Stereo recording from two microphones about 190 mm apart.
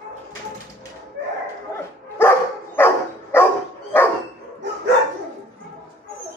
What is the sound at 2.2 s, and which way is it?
Dog, 10° left (ahead or behind).